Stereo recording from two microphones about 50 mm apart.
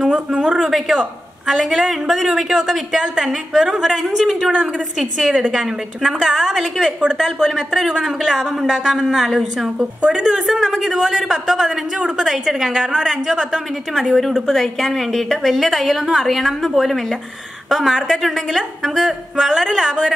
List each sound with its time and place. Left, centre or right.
0.1 s a sound: centre
0.7 s a woman's voice: centre
4.2 s a woman's voice: centre
4.5 s a woman's voice: right
5.5 s a woman's voice: centre
9.8 s a woman's voice: centre